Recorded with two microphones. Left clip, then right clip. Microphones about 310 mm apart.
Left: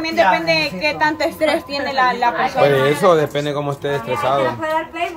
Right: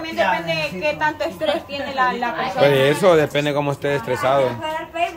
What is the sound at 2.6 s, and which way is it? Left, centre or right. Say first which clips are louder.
Speech: even; centre.